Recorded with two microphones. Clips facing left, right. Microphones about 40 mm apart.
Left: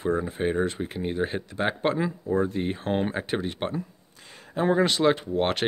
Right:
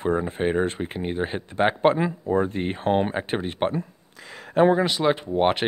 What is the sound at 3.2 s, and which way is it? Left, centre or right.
Speech, right.